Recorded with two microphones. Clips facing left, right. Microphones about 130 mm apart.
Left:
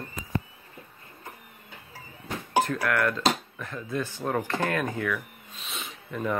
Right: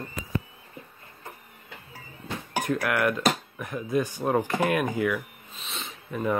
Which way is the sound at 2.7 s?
15° right (ahead or behind).